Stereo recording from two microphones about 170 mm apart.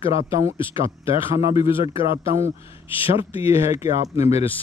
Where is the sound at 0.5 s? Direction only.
30° left (ahead or behind).